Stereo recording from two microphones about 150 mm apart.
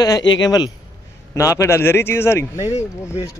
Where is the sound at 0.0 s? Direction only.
25° left (ahead or behind).